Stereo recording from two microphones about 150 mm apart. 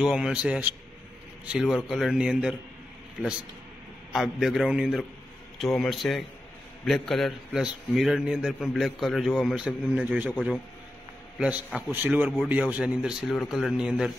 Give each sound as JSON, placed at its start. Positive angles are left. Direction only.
{"t": 0.0, "sound": "a man's voice", "side_deg": -5}
{"t": 4.1, "sound": "a man's voice", "side_deg": 0}
{"t": 11.3, "sound": "a man's voice", "side_deg": -5}